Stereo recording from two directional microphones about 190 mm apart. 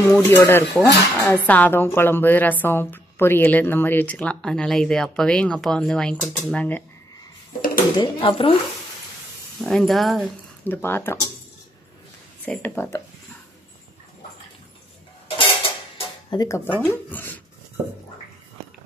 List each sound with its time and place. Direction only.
0.1 s a woman's voice: 10° left (ahead or behind)
8.0 s speech: 25° left (ahead or behind)
9.6 s speech: centre (ahead or behind)
10.6 s a woman's voice: 10° left (ahead or behind)
12.4 s a woman's voice: 10° left (ahead or behind)
15.2 s dishes: 30° left (ahead or behind); by 17.4 s 10° left (ahead or behind)